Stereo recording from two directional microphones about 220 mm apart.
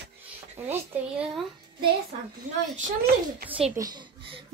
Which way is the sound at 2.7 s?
45° right (ahead or behind).